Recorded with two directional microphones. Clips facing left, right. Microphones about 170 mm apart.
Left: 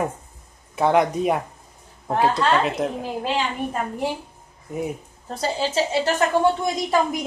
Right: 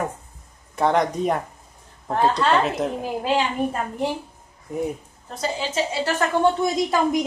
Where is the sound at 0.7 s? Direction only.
5° left (ahead or behind).